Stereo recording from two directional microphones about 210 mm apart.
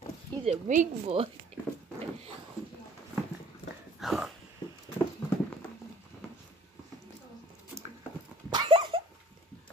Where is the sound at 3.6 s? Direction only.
25° left (ahead or behind).